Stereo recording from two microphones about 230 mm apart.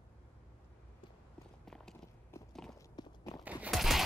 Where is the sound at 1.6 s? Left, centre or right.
Centre.